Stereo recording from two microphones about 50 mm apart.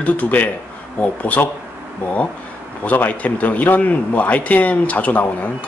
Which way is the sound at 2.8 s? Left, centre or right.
Left.